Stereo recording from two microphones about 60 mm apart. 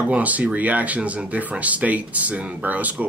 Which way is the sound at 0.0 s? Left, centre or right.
Right.